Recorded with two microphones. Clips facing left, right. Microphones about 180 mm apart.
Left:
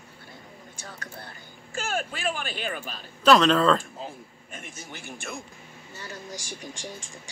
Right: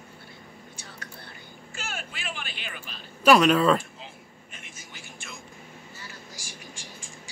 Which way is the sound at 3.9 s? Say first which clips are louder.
Left 7 dB; 45° left (ahead or behind).